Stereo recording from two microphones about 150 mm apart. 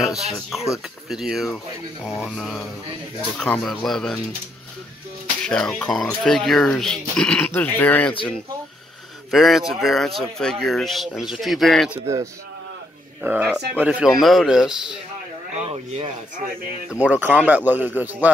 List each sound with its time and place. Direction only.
0.3 s speech: centre (ahead or behind)
5.4 s speech: 5° left (ahead or behind)
9.3 s speech: centre (ahead or behind)
13.2 s a man's voice: 10° right (ahead or behind)
15.5 s speech: 45° right (ahead or behind)
16.9 s a man's voice: 10° right (ahead or behind)